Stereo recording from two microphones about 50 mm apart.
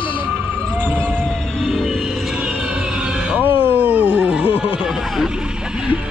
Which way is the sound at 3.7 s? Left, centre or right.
Right.